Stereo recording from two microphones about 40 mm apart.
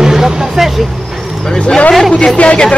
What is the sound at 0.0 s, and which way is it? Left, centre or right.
Music, centre.